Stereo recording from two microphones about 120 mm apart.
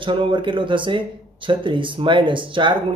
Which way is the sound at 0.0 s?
45° right (ahead or behind).